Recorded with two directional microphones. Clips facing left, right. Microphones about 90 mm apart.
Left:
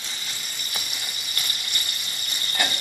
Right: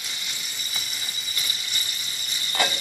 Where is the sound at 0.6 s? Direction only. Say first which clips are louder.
Left 1 dB; 60° left (ahead or behind).